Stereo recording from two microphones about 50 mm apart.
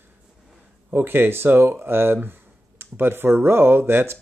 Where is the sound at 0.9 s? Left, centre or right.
Right.